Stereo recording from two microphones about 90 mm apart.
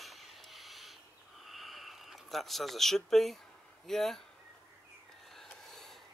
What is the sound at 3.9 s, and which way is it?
Speech, 5° left (ahead or behind).